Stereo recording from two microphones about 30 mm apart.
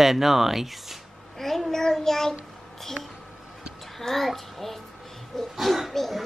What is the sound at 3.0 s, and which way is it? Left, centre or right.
Speech, right.